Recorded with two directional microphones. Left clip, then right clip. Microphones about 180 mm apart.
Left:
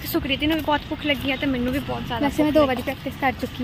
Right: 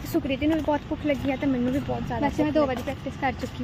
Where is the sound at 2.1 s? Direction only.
55° left (ahead or behind).